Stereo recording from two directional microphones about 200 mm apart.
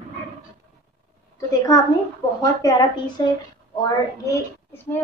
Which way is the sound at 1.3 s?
15° left (ahead or behind).